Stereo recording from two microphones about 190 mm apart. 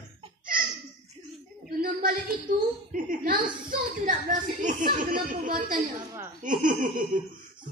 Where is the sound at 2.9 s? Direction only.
45° right (ahead or behind).